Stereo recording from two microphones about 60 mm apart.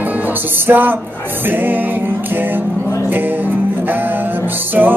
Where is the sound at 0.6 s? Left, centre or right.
Right.